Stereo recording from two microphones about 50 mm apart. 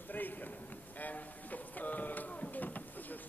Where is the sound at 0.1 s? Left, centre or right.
Left.